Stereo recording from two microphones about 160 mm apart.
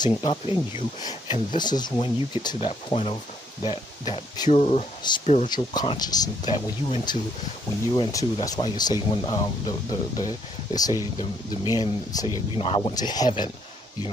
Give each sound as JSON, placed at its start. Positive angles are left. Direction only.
{"t": 0.0, "sound": "speech", "side_deg": 30}
{"t": 4.5, "sound": "speech", "side_deg": 40}
{"t": 5.5, "sound": "speech", "side_deg": 25}
{"t": 12.5, "sound": "speech", "side_deg": 35}
{"t": 12.9, "sound": "speech", "side_deg": 25}